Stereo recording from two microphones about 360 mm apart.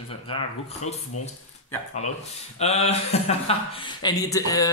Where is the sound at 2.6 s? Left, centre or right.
Centre.